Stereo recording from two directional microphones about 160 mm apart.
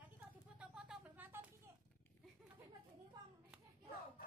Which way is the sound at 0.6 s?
5° right (ahead or behind).